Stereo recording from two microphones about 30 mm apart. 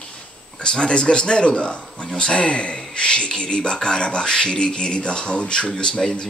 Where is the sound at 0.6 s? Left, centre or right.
Left.